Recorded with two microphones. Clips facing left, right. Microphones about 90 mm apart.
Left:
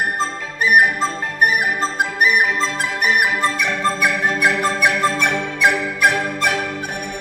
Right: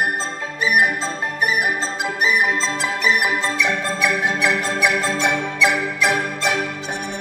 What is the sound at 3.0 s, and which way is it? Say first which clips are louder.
Music: left 3 dB; 55° left (ahead or behind).